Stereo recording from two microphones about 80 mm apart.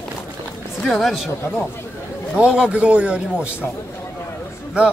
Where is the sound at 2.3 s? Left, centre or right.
Centre.